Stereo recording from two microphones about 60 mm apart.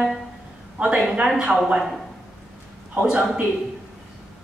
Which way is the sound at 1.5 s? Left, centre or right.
Centre.